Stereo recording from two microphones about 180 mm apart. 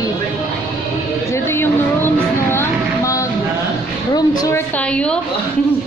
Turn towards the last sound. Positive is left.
turn(degrees=5)  # may be behind; listen again after turning